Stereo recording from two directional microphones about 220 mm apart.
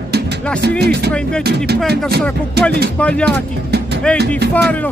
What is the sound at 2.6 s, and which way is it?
Speech, 45° right (ahead or behind).